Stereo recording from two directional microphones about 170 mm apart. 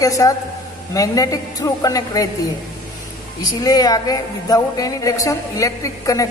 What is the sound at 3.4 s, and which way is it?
A woman's voice, 20° left (ahead or behind).